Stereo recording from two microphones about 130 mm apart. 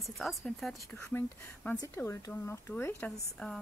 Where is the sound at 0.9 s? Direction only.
20° left (ahead or behind).